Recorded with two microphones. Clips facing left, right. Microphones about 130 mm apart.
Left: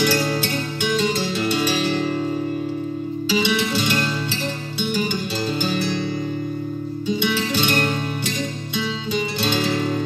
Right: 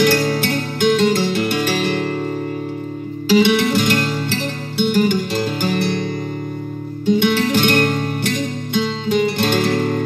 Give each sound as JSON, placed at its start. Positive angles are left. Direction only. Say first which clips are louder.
{"t": 0.0, "sound": "music", "louder": "right 4 dB", "side_deg": -55}
{"t": 3.3, "sound": "music", "louder": "right 8 dB", "side_deg": -60}
{"t": 7.1, "sound": "music", "louder": "right 7 dB", "side_deg": -60}